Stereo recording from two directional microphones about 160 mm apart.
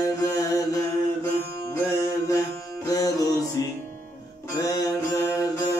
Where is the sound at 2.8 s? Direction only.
20° left (ahead or behind).